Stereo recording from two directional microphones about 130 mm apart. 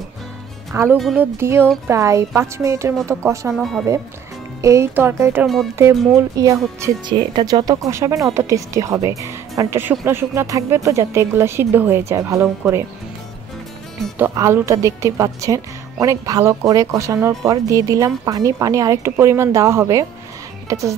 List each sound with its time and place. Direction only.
0.7 s a woman's voice: 20° right (ahead or behind)
3.5 s speech: centre (ahead or behind)
4.6 s a woman's voice: 25° right (ahead or behind)
7.1 s a woman's voice: 35° right (ahead or behind); by 12.8 s 20° right (ahead or behind)
14.1 s a woman's voice: 20° right (ahead or behind)